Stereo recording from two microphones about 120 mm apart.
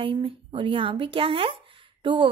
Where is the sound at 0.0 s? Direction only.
50° right (ahead or behind).